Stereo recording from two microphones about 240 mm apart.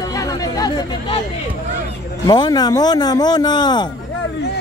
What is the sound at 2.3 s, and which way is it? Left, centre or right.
A man's voice, centre.